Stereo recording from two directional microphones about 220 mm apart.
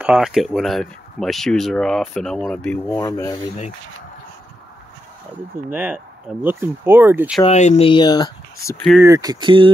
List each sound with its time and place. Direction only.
0.0 s speech: 5° right (ahead or behind); by 3.3 s 15° left (ahead or behind)
5.7 s speech: 10° right (ahead or behind)
7.4 s speech: 30° left (ahead or behind)
9.0 s speech: 15° right (ahead or behind)